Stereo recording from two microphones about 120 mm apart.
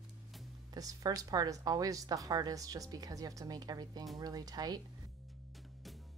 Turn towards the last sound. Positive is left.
turn(degrees=-30)  # may be behind; listen again after turning